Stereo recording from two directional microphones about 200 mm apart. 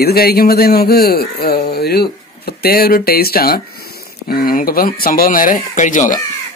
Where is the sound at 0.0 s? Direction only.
50° left (ahead or behind).